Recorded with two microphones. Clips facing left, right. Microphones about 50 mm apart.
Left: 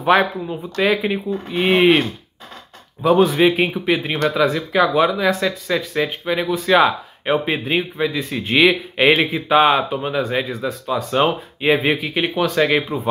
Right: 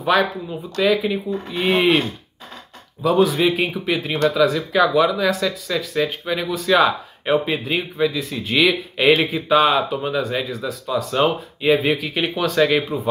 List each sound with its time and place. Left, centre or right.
0.0 s a man's voice: left
3.0 s a man's voice: left
7.3 s a man's voice: left